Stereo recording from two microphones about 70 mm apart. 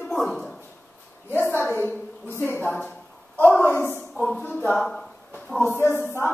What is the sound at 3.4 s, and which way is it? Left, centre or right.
Speech, left.